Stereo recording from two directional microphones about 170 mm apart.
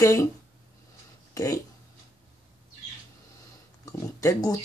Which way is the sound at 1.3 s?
20° left (ahead or behind).